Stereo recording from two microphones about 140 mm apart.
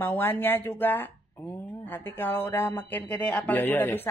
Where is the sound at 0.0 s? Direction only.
15° left (ahead or behind).